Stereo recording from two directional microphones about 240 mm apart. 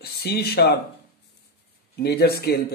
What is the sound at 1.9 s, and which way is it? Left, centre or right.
Speech, left.